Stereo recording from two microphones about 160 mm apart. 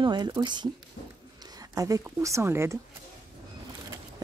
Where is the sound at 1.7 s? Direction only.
20° right (ahead or behind).